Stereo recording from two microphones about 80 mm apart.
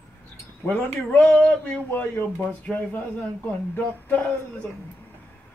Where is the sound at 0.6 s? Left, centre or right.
Left.